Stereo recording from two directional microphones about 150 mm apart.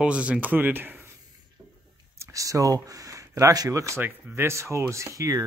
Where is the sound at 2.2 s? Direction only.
20° right (ahead or behind).